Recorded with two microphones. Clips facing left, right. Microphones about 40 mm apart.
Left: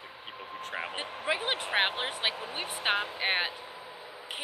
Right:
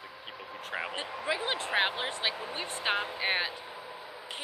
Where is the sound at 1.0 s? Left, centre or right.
Left.